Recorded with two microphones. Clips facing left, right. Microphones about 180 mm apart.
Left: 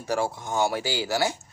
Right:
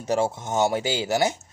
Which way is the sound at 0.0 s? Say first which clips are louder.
Right 3 dB; 20° right (ahead or behind).